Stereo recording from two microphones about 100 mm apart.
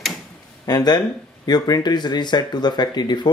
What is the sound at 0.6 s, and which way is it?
Speech, 45° left (ahead or behind).